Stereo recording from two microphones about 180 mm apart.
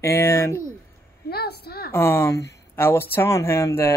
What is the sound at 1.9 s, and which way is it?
Speech, 15° left (ahead or behind).